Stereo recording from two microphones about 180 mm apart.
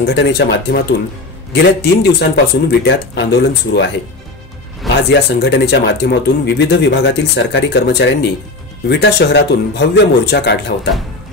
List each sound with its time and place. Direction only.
0.0 s speech: 75° left (ahead or behind)
5.1 s speech: 70° left (ahead or behind)